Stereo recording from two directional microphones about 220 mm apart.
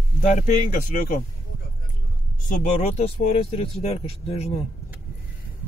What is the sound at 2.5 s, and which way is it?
Speech, 35° left (ahead or behind).